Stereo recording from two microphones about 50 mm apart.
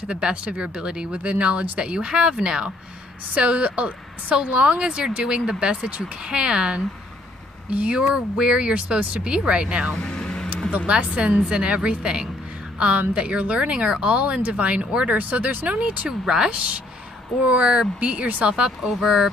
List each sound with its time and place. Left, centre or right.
0.1 s speech: right
1.1 s a woman's voice: right
3.3 s a woman's voice: right
9.9 s vehicle: centre
10.9 s a woman's voice: right
15.0 s speech: right
16.1 s a woman's voice: centre